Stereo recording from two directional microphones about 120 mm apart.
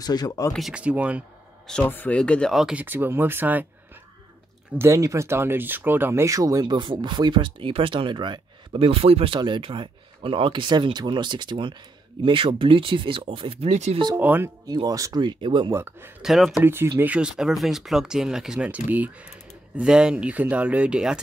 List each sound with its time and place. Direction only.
0.0 s speech: 35° left (ahead or behind)
0.5 s speech: centre (ahead or behind)
1.7 s speech: 15° left (ahead or behind)
2.5 s speech: 10° right (ahead or behind)
4.7 s speech: 25° right (ahead or behind); by 13.9 s 65° right (ahead or behind)
14.1 s speech: 15° right (ahead or behind)
14.7 s speech: 35° right (ahead or behind)
15.7 s speech: 20° right (ahead or behind)
16.2 s speech: centre (ahead or behind)
16.6 s speech: 20° right (ahead or behind)